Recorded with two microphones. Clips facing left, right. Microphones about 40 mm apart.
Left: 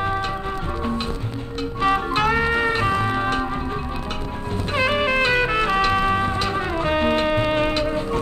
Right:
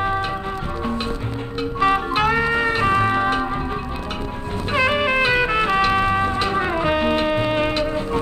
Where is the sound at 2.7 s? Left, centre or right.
Centre.